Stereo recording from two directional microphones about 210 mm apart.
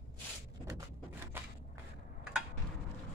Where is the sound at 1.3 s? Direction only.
10° right (ahead or behind).